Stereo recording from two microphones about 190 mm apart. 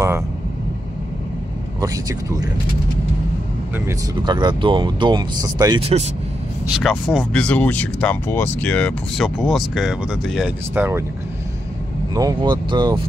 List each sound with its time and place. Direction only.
1.8 s speech: 20° right (ahead or behind)
3.7 s speech: 20° right (ahead or behind)
5.8 s speech: 30° right (ahead or behind)
6.7 s speech: centre (ahead or behind)
12.1 s speech: 20° right (ahead or behind)